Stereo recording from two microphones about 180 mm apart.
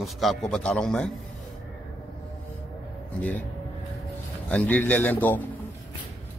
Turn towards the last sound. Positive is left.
turn(degrees=10)  # may be behind; listen again after turning